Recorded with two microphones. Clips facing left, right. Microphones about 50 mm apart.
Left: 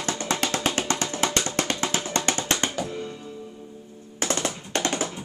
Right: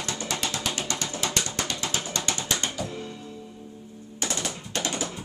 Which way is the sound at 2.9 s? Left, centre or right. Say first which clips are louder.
Left 3 dB; centre.